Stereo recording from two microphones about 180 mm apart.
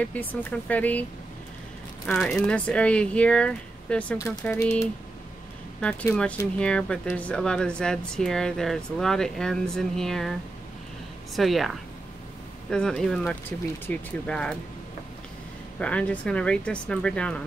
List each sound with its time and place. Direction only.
0.0 s speech: 10° left (ahead or behind)
2.0 s speech: 5° left (ahead or behind)
11.3 s speech: centre (ahead or behind)
15.8 s speech: 5° left (ahead or behind)